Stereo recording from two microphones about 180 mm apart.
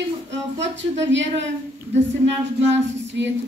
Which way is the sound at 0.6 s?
85° right.